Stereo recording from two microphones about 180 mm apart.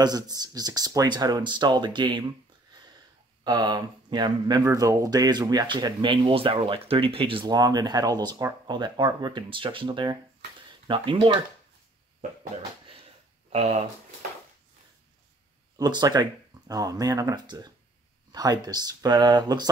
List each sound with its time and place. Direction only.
0.0 s speech: 20° right (ahead or behind)
13.5 s speech: 35° right (ahead or behind)
15.8 s speech: 20° right (ahead or behind)